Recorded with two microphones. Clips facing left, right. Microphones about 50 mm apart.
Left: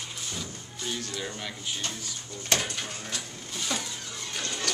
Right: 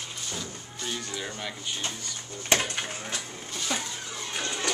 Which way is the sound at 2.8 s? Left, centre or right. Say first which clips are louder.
Right 2 dB; right.